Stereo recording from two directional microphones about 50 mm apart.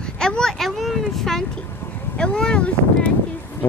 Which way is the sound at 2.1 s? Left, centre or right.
Centre.